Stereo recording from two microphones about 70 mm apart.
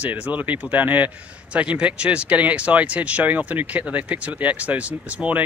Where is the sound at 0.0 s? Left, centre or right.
Right.